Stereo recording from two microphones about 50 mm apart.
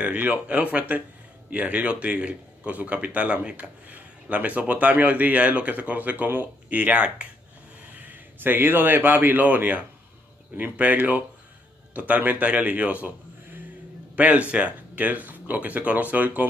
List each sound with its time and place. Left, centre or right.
0.0 s a man's voice: right
1.9 s a man's voice: right
14.1 s a man's voice: right